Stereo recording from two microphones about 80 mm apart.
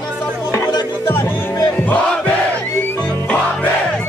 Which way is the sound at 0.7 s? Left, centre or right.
Left.